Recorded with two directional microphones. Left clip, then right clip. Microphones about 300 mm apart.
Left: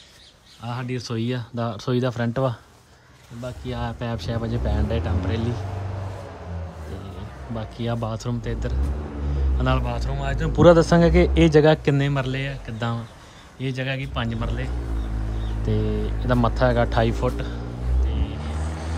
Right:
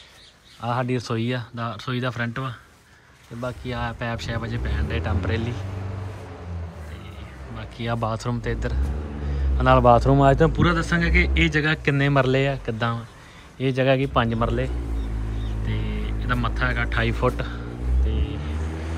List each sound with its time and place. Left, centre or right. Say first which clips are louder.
0.6 s a man's voice: right 6 dB; centre
7.5 s a man's voice: even; centre
10.5 s a man's voice: left 8 dB; centre
15.7 s a man's voice: left 8 dB; centre
18.1 s vehicle: right 1 dB; left